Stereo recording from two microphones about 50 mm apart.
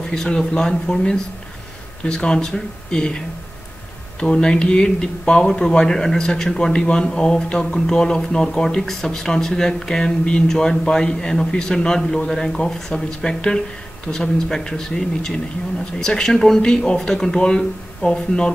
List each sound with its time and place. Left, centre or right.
0.1 s speech: centre